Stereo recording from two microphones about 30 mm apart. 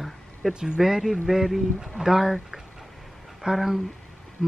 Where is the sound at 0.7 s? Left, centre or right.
Centre.